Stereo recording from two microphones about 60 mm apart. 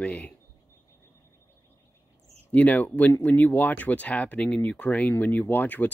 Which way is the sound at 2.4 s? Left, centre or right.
Left.